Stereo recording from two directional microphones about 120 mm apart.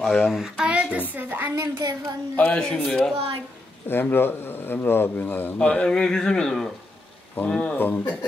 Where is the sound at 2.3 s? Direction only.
10° left (ahead or behind).